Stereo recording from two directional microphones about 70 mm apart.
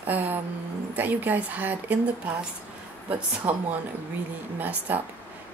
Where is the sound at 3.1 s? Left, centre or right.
Right.